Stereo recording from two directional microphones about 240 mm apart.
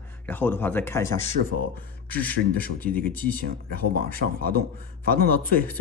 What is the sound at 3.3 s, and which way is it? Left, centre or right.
A man's voice, right.